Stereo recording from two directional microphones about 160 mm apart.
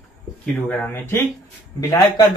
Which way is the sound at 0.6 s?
10° left (ahead or behind).